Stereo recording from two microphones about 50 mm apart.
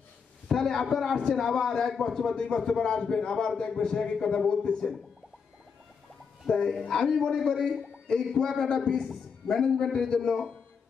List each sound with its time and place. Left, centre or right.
0.5 s a man's voice: centre
6.5 s a man's voice: centre